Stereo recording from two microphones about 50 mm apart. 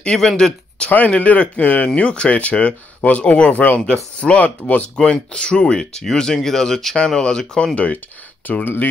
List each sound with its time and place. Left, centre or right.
0.0 s speech: centre
0.8 s speech: left
7.7 s speech: left